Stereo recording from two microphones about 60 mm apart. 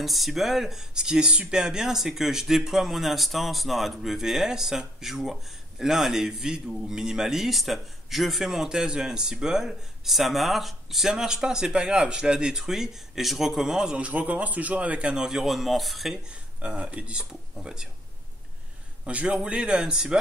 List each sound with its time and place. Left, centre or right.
0.0 s speech: centre; by 15.1 s right
15.1 s speech: centre
16.3 s speech: right
19.0 s speech: right